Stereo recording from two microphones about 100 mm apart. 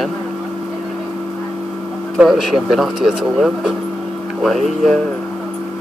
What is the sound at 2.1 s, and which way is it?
Speech, 5° right (ahead or behind).